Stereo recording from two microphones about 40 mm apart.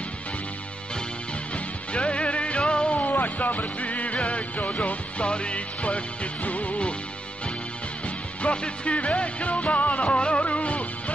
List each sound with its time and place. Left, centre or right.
1.9 s music: left
3.0 s music: left
8.4 s music: left